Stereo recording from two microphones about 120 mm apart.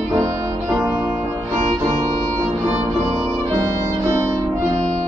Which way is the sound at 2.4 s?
15° right (ahead or behind).